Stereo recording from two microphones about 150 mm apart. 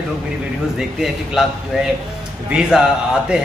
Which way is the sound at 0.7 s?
5° right (ahead or behind).